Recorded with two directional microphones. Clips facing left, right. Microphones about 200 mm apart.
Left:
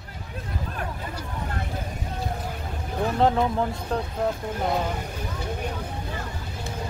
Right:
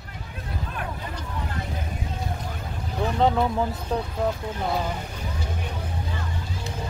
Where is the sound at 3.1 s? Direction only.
Centre (ahead or behind).